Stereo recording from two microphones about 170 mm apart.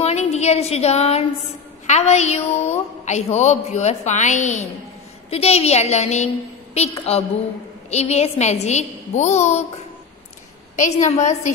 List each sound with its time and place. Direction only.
0.0 s a woman's voice: 40° left (ahead or behind)
10.8 s a woman's voice: 45° left (ahead or behind)